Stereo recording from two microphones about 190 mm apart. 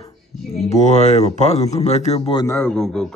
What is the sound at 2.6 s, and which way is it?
Speech, 5° left (ahead or behind).